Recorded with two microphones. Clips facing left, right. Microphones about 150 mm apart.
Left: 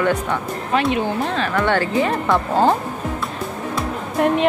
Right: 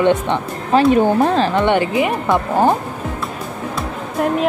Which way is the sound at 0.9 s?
45° right (ahead or behind).